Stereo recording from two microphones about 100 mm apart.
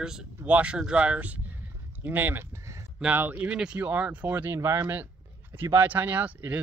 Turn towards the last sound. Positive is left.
turn(degrees=-15)  # may be behind; listen again after turning